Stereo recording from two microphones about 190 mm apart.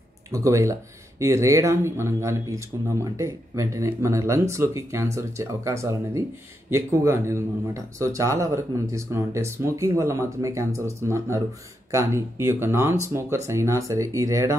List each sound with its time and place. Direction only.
0.3 s speech: 15° right (ahead or behind)